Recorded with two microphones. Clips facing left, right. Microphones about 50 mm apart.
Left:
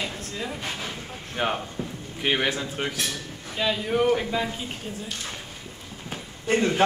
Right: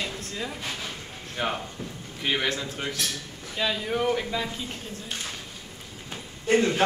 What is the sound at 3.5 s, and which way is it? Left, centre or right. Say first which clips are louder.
Speech: left 3 dB; centre.